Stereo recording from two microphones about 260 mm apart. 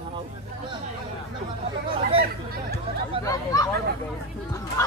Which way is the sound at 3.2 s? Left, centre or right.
Centre.